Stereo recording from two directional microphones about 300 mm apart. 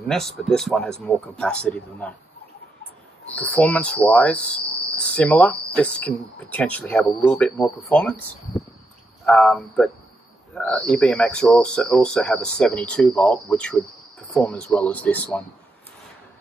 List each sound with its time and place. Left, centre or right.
0.1 s cricket: centre
3.3 s cricket: centre